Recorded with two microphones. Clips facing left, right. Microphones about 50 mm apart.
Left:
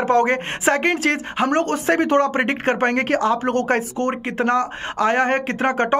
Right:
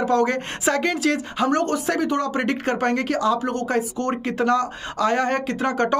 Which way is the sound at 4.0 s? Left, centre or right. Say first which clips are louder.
Left 1 dB; left.